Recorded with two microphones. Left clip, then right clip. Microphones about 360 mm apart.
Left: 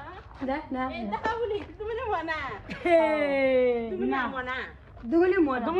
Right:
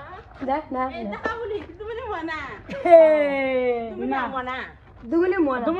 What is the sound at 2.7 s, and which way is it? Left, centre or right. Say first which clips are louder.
A woman's voice: right 10 dB; centre.